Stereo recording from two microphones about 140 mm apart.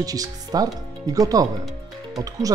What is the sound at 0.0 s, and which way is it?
Speech, 25° right (ahead or behind).